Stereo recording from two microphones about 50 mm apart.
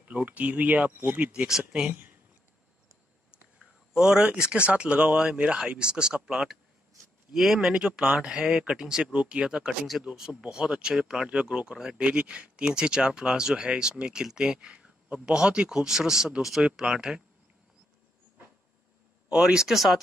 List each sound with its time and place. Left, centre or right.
0.1 s speech: right
1.6 s speech: right
3.5 s a sound: centre
4.6 s speech: right; by 7.7 s centre
7.7 s speech: centre
9.1 s speech: right
11.2 s speech: right
19.2 s speech: centre
19.7 s speech: centre